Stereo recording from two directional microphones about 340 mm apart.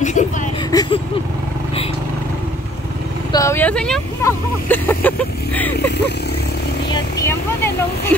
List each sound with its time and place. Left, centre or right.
0.0 s a sound: left
0.7 s vehicle: centre
3.3 s speech: centre
6.9 s speech: centre